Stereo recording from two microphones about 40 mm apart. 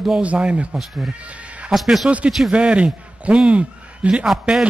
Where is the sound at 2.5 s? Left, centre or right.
Right.